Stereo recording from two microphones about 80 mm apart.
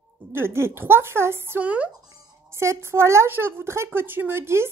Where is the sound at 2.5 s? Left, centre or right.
Right.